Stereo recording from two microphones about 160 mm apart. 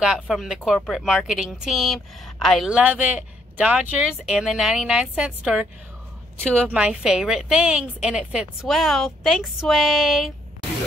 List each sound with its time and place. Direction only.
0.0 s a woman's voice: 5° right (ahead or behind)